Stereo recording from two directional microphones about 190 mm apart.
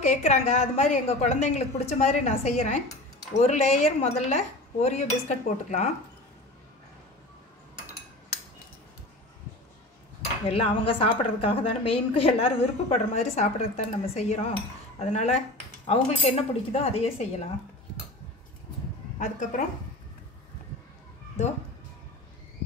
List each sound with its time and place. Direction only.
0.0 s a woman's voice: 40° left (ahead or behind)
10.4 s a woman's voice: 30° left (ahead or behind)
19.1 s a woman's voice: 45° left (ahead or behind)